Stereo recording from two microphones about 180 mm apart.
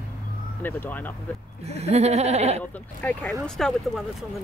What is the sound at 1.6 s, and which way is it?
Speech, 35° right (ahead or behind).